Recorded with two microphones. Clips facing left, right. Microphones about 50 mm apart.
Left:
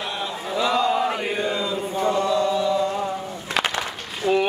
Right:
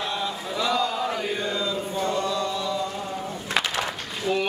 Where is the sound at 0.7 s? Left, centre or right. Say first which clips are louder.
Left 4 dB; left.